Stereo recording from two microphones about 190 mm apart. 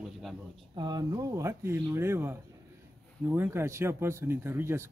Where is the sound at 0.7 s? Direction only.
20° right (ahead or behind).